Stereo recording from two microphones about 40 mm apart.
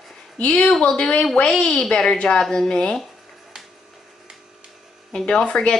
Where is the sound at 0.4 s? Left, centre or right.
Left.